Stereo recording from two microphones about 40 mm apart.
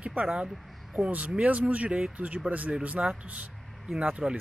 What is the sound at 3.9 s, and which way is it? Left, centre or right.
Speech, centre.